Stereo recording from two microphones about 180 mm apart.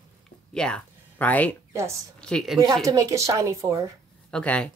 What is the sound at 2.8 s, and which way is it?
A woman's voice, 20° right (ahead or behind).